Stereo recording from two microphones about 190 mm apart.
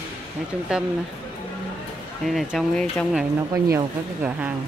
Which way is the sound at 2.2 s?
Centre (ahead or behind).